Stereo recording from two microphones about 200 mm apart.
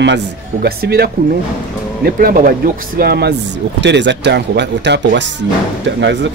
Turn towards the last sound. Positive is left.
turn(degrees=-60)  # may be behind; listen again after turning